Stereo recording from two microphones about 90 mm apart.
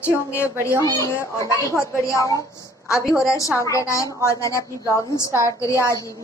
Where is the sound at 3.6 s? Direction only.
35° left (ahead or behind).